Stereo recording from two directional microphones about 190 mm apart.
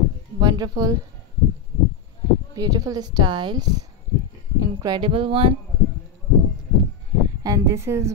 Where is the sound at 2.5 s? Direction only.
20° right (ahead or behind).